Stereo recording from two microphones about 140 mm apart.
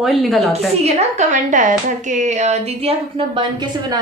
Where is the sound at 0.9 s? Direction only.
55° right (ahead or behind).